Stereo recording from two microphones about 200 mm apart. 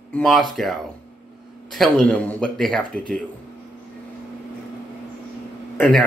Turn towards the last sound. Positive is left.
turn(degrees=5)  # may be behind; listen again after turning